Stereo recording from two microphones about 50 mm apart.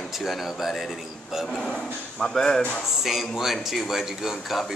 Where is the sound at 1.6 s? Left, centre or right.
Centre.